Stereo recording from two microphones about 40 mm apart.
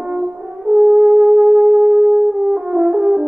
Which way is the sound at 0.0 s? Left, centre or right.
Centre.